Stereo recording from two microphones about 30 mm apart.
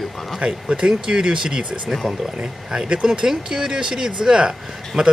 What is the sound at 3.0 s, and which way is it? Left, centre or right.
Speech, right.